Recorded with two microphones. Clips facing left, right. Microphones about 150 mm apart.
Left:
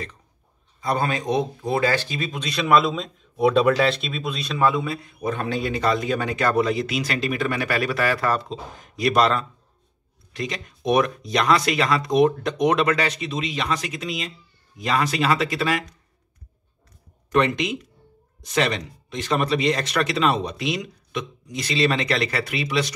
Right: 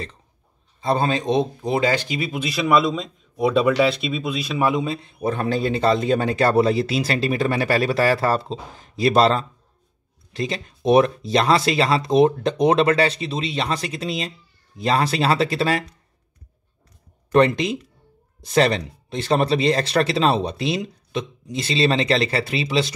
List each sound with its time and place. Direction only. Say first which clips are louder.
0.7 s speech: right 3 dB; 25° right (ahead or behind); by 4.6 s 5° right (ahead or behind)
4.6 s a man's voice: left 2 dB; 20° right (ahead or behind)
17.3 s a man's voice: right 4 dB; 35° right (ahead or behind)